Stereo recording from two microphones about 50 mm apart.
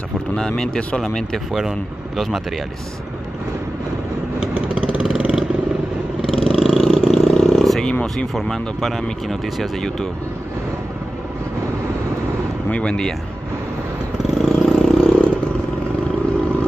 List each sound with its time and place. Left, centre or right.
0.4 s speech: centre
1.5 s speech: centre
4.4 s vehicle: right
6.3 s vehicle: centre
6.7 s vehicle: centre
7.4 s a sound: centre
7.9 s speech: left
8.4 s speech: centre
12.8 s speech: centre
14.2 s vehicle: centre
14.8 s vehicle: centre